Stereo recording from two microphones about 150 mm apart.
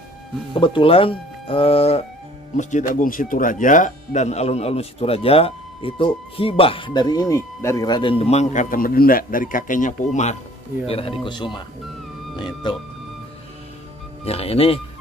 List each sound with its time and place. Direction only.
0.6 s speech: 35° left (ahead or behind)
2.5 s speech: 55° left (ahead or behind)
10.9 s speech: 40° left (ahead or behind)
14.2 s speech: 40° left (ahead or behind)